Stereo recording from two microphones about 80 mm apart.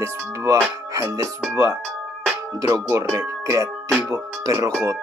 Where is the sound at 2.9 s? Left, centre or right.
Right.